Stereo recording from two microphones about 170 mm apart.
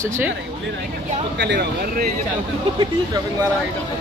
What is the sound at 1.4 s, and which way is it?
Speech, 85° right.